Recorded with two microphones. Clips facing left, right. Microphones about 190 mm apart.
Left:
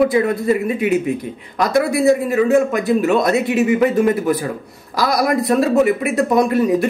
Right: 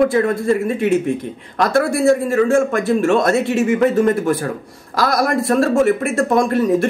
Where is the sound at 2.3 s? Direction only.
45° right (ahead or behind).